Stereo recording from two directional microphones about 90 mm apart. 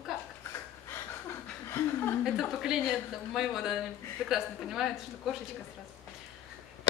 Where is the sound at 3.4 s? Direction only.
5° right (ahead or behind).